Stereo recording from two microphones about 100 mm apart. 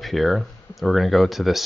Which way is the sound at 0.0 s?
Centre (ahead or behind).